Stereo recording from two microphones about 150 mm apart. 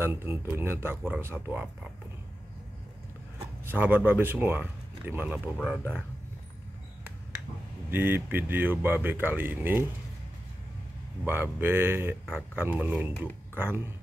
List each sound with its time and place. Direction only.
0.0 s speech: 15° right (ahead or behind)
3.3 s speech: 15° right (ahead or behind)
7.9 s speech: 15° right (ahead or behind)
11.2 s speech: 15° right (ahead or behind)